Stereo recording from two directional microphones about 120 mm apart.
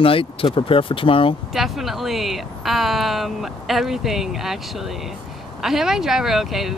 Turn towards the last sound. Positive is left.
turn(degrees=0)  # may be behind; listen again after turning